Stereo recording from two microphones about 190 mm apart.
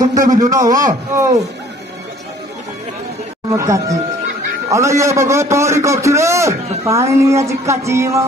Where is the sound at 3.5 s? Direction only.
15° right (ahead or behind).